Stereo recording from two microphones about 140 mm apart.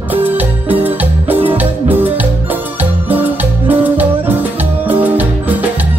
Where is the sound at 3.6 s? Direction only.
10° right (ahead or behind).